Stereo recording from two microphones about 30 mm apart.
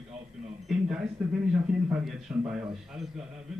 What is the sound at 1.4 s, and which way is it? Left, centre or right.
A man's voice, right.